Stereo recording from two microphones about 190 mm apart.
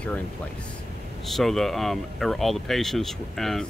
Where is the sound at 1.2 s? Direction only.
Centre (ahead or behind).